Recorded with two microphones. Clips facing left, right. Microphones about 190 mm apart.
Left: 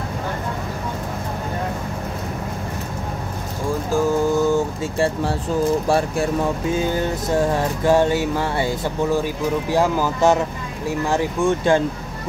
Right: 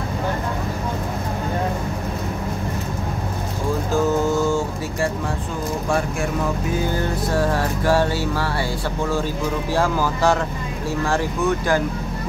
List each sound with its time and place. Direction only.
5.9 s speech: 35° left (ahead or behind)
6.7 s music: 20° left (ahead or behind)
9.7 s speech: 15° left (ahead or behind)
10.9 s music: 15° left (ahead or behind)